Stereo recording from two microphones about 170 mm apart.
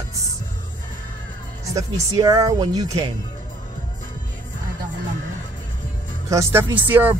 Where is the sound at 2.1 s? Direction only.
20° right (ahead or behind).